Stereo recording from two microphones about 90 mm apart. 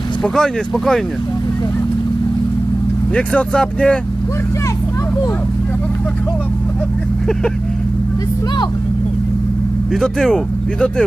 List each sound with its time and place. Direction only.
0.2 s speech: 5° left (ahead or behind)
3.2 s speech: 10° left (ahead or behind)
9.9 s speech: 5° left (ahead or behind)